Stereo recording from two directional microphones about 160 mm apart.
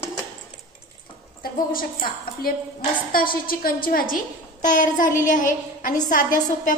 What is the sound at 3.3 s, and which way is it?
A woman's voice, 65° left (ahead or behind).